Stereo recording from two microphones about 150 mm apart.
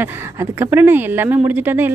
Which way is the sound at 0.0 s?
15° right (ahead or behind).